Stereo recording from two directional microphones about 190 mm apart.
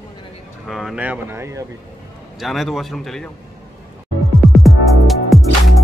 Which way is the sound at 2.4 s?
Centre (ahead or behind).